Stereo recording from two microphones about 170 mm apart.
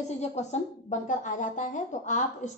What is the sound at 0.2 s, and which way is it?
A woman's voice, 40° left (ahead or behind).